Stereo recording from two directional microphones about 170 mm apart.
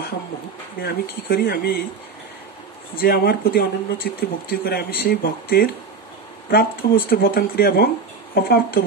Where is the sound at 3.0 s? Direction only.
65° left (ahead or behind).